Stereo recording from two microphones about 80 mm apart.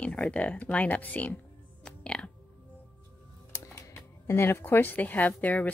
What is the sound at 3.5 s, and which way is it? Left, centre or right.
Speech, left.